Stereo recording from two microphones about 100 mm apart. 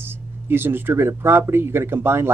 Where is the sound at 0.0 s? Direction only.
20° right (ahead or behind).